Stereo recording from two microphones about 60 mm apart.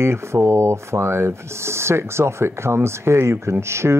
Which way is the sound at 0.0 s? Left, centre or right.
Right.